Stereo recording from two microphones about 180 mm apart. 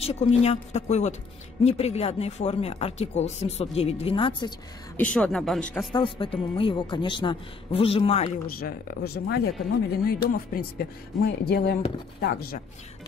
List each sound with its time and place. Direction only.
0.0 s speech: 35° left (ahead or behind)
4.9 s speech: 5° left (ahead or behind)
5.9 s a woman's voice: 30° left (ahead or behind)
8.5 s speech: 55° left (ahead or behind)